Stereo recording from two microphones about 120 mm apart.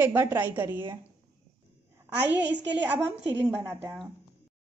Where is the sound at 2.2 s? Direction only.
15° right (ahead or behind).